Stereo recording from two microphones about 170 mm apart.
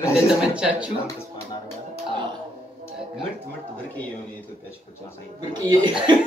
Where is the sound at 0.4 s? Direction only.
5° right (ahead or behind).